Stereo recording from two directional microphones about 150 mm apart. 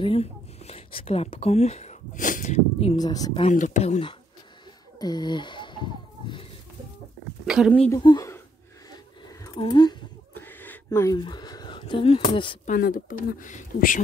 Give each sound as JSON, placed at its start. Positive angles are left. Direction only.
{"t": 0.0, "sound": "speech", "side_deg": 40}
{"t": 3.0, "sound": "speech", "side_deg": 25}
{"t": 3.4, "sound": "speech", "side_deg": 55}
{"t": 4.9, "sound": "speech", "side_deg": 25}
{"t": 7.4, "sound": "speech", "side_deg": -5}
{"t": 8.0, "sound": "speech", "side_deg": 30}
{"t": 8.9, "sound": "a sound", "side_deg": 20}
{"t": 9.6, "sound": "speech", "side_deg": 30}
{"t": 10.3, "sound": "a sound", "side_deg": 15}
{"t": 10.9, "sound": "speech", "side_deg": 25}
{"t": 12.6, "sound": "speech", "side_deg": 70}